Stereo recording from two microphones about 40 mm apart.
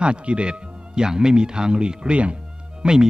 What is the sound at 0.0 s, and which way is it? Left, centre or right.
Speech, right.